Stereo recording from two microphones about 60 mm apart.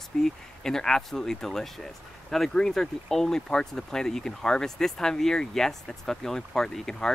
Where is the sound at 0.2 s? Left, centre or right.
Centre.